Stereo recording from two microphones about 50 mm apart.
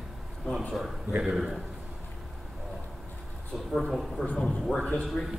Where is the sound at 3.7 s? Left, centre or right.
Centre.